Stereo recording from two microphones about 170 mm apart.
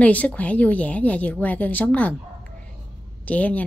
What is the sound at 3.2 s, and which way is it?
Speech, 10° left (ahead or behind).